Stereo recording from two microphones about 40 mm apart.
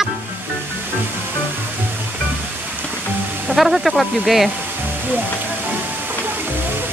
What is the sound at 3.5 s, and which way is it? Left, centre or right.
Speech, centre.